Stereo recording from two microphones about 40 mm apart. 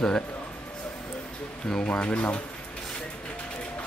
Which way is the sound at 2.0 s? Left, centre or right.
Left.